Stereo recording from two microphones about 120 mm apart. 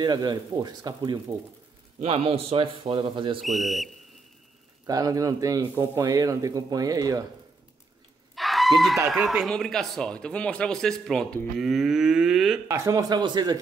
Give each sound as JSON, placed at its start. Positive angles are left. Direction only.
{"t": 0.0, "sound": "speech", "side_deg": -35}
{"t": 2.0, "sound": "speech", "side_deg": -55}
{"t": 3.3, "sound": "a man's voice", "side_deg": 0}
{"t": 4.8, "sound": "speech", "side_deg": -30}
{"t": 8.4, "sound": "a sound", "side_deg": 0}
{"t": 9.1, "sound": "a man's voice", "side_deg": 0}
{"t": 12.6, "sound": "speech", "side_deg": -25}